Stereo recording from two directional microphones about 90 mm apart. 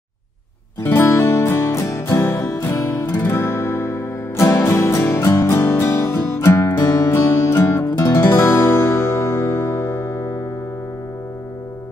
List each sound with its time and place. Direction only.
0.8 s music: 30° left (ahead or behind)